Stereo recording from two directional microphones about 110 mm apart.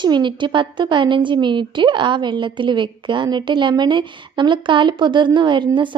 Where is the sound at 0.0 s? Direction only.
45° right (ahead or behind).